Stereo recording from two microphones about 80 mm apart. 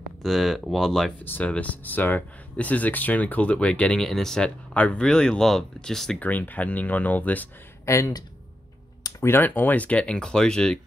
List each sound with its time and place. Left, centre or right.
0.2 s speech: centre
1.2 s speech: left; by 6.1 s centre
6.1 s speech: left
7.8 s speech: left
9.2 s speech: left; by 10.8 s centre